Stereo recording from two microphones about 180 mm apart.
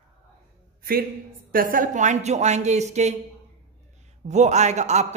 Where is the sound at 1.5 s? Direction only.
50° right (ahead or behind).